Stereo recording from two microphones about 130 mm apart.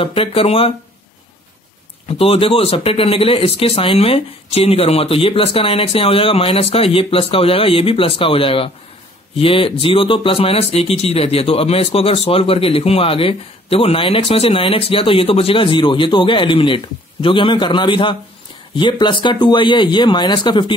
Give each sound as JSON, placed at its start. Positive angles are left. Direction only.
{"t": 0.0, "sound": "speech", "side_deg": 45}
{"t": 2.0, "sound": "speech", "side_deg": 50}